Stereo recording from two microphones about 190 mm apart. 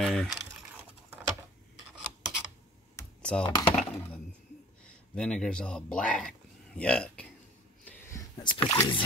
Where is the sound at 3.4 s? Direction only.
25° left (ahead or behind).